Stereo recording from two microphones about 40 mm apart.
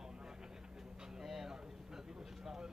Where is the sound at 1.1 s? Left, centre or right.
Centre.